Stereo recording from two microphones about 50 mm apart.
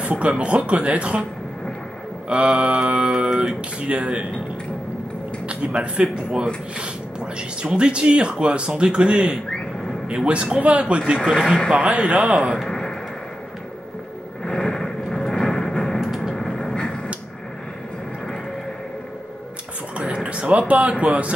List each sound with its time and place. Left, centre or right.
0.0 s speech: right
2.2 s speech: right
5.5 s speech: right
11.3 s speech: centre
11.7 s speech: right
12.5 s a sound: centre
14.4 s a sound: centre
16.3 s vehicle: centre
20.2 s a sound: right
21.0 s speech: right